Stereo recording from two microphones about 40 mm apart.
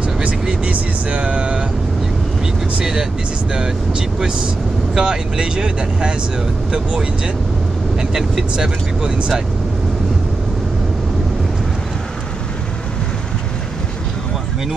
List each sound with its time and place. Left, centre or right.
0.7 s vehicle: right
2.8 s speech: centre
8.5 s speech: right